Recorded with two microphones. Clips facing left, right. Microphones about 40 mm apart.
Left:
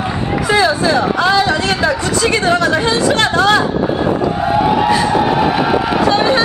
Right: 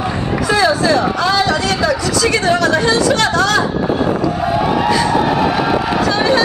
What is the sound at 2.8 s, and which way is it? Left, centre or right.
Speech, left.